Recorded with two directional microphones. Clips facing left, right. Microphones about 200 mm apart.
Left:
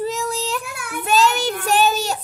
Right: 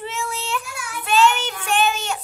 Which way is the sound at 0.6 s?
55° left (ahead or behind).